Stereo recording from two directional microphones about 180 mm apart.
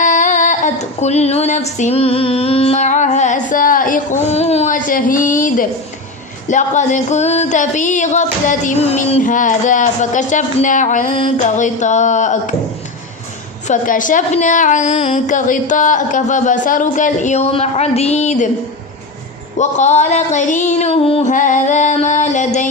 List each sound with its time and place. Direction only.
0.0 s female singing: 45° left (ahead or behind)
13.7 s female singing: 45° left (ahead or behind)
19.5 s music: 40° left (ahead or behind)